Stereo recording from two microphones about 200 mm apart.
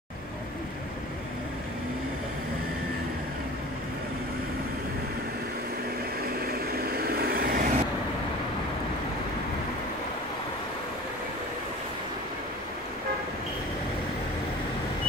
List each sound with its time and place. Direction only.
6.4 s vehicle: 50° right (ahead or behind)